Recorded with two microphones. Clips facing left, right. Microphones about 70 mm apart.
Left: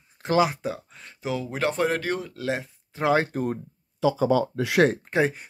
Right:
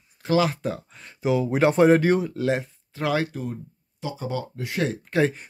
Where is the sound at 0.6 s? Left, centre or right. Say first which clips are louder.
Right 2 dB; centre.